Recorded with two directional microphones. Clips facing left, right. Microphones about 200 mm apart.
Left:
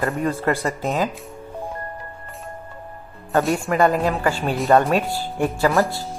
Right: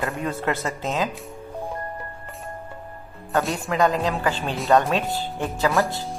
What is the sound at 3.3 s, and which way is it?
Speech, centre (ahead or behind).